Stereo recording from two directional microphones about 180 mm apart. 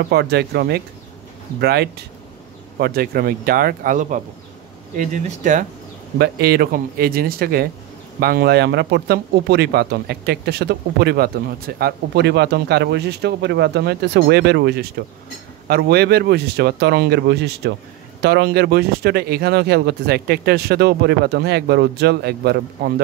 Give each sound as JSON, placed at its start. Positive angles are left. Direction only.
{"t": 0.1, "sound": "speech", "side_deg": -65}
{"t": 6.1, "sound": "speech", "side_deg": -60}